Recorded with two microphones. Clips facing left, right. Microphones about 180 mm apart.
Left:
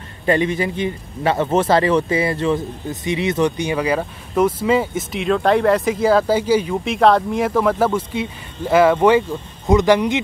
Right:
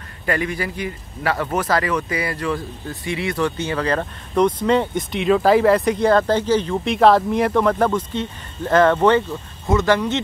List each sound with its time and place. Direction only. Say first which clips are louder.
0.2 s a man's voice: left 5 dB; 25° left (ahead or behind)